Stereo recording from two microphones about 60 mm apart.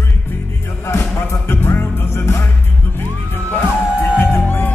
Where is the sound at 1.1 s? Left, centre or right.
Left.